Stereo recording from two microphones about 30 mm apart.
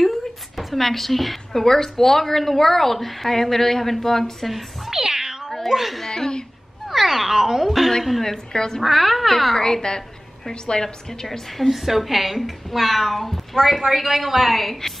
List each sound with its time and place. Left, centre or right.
0.6 s speech: centre
5.0 s cat: right
6.0 s a sound: left
6.9 s speech: centre
8.5 s speech: left
8.8 s a woman's voice: centre
9.6 s a woman's voice: left
11.2 s a woman's voice: centre